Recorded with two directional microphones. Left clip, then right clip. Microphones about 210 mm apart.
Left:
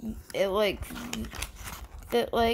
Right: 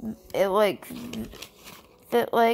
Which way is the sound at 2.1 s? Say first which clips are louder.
Right 4 dB; 10° right (ahead or behind).